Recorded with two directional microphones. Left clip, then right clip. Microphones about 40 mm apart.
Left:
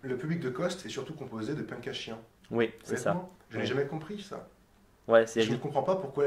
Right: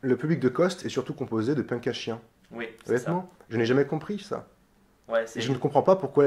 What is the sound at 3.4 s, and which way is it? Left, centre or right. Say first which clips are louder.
Speech: right 8 dB; right.